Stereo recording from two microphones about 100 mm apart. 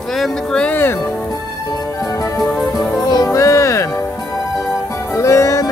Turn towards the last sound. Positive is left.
turn(degrees=30)  # may be behind; listen again after turning